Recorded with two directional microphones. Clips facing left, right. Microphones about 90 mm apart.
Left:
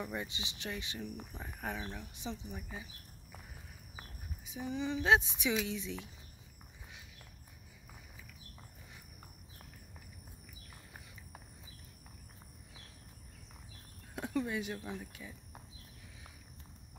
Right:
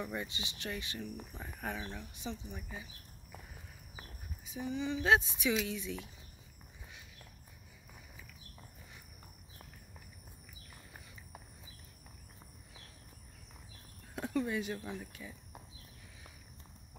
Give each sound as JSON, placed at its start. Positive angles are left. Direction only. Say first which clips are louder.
{"t": 0.0, "sound": "speech", "louder": "even", "side_deg": 10}
{"t": 0.3, "sound": "a woman's voice", "louder": "right 1 dB", "side_deg": 25}
{"t": 1.3, "sound": "speech", "louder": "even", "side_deg": 5}
{"t": 2.3, "sound": "speech", "louder": "even", "side_deg": 15}
{"t": 4.5, "sound": "a woman's voice", "louder": "even", "side_deg": 25}
{"t": 14.1, "sound": "a sound", "louder": "right 1 dB", "side_deg": 10}
{"t": 14.9, "sound": "speech", "louder": "even", "side_deg": 5}